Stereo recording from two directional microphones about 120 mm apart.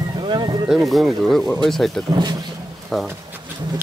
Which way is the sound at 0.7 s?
Centre (ahead or behind).